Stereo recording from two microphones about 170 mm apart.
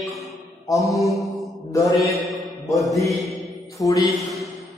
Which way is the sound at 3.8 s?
20° left (ahead or behind).